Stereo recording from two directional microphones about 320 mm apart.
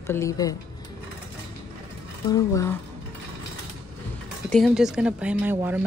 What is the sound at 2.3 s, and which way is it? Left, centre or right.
Speech, centre.